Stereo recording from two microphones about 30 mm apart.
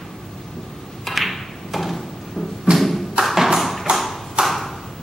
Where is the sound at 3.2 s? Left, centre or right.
Centre.